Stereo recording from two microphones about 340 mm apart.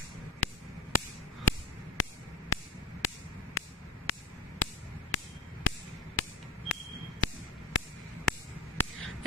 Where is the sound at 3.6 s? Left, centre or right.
Left.